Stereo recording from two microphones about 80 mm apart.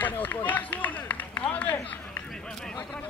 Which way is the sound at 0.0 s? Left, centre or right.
Left.